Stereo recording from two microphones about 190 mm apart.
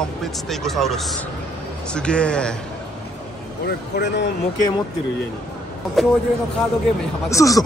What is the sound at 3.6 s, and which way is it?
Speech, 65° left (ahead or behind).